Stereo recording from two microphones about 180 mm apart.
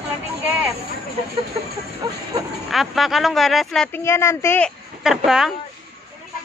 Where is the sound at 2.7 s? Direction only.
Centre (ahead or behind).